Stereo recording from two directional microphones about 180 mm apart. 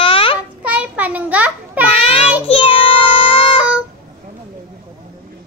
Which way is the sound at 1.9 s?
35° left (ahead or behind).